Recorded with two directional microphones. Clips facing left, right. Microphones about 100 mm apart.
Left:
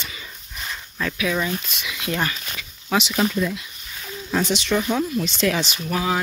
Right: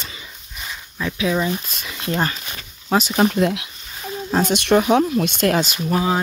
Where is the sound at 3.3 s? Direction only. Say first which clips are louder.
Right 5 dB; 70° right (ahead or behind).